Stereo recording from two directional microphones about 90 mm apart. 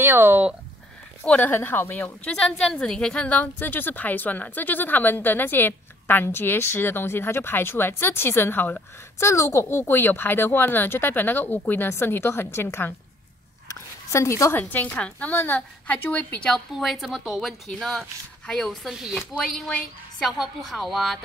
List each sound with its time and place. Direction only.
0.0 s speech: 25° right (ahead or behind)
1.2 s speech: 15° left (ahead or behind)
2.2 s speech: 5° left (ahead or behind); by 9.3 s 20° left (ahead or behind)
9.3 s speech: 35° left (ahead or behind)
13.7 s a sound: 35° left (ahead or behind)
14.6 s a woman's voice: 20° left (ahead or behind)
16.5 s a woman's voice: centre (ahead or behind)
20.2 s a woman's voice: centre (ahead or behind)